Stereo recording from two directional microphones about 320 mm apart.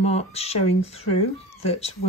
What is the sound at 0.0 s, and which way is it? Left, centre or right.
A woman's voice, centre.